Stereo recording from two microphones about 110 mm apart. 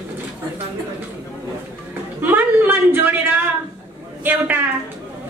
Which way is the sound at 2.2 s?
20° right (ahead or behind).